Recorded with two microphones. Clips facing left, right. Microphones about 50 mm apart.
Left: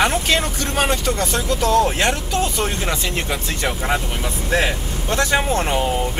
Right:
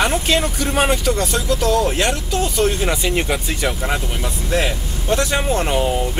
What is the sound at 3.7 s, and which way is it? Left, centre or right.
Speech, centre.